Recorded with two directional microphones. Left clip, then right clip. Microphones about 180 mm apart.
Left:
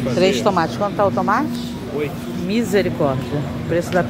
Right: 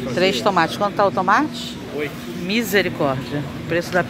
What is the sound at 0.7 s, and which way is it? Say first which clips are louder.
Speech: even; 20° right (ahead or behind).